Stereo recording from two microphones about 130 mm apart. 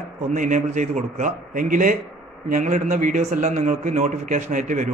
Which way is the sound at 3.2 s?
55° right (ahead or behind).